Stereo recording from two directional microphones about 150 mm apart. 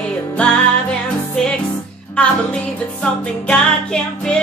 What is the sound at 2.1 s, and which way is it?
Music, 5° left (ahead or behind).